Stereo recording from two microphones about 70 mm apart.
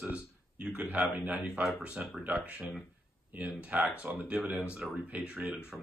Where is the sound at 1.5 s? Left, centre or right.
Centre.